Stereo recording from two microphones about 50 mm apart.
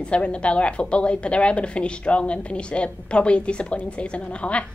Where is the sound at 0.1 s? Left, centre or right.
Left.